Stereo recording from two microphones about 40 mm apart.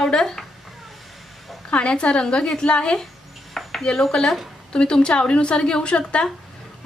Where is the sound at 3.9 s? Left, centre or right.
Centre.